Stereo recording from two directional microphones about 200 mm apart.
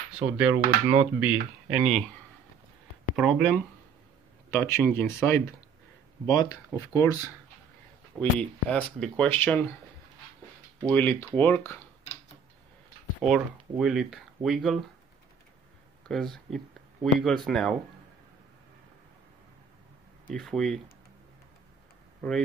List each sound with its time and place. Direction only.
0.1 s dishes: 5° right (ahead or behind)
0.8 s speech: 10° right (ahead or behind)
3.2 s speech: centre (ahead or behind)
8.2 s speech: 5° left (ahead or behind)
10.9 s speech: 10° left (ahead or behind)
13.2 s speech: centre (ahead or behind)
16.1 s speech: centre (ahead or behind)
20.3 s speech: centre (ahead or behind)